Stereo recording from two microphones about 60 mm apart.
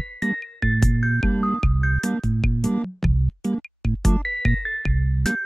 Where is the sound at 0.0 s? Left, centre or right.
Centre.